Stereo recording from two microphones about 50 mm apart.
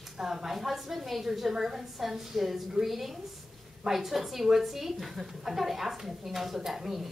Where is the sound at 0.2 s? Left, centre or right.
Centre.